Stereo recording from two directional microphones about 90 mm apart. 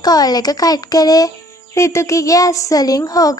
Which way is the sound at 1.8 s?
30° left (ahead or behind).